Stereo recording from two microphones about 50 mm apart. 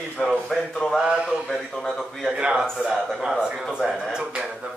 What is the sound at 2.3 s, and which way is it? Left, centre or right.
A man's voice, centre.